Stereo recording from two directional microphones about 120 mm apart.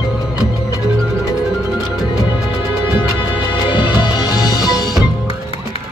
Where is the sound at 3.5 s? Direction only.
40° left (ahead or behind).